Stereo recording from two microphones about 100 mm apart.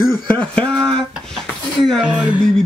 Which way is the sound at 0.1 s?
15° left (ahead or behind).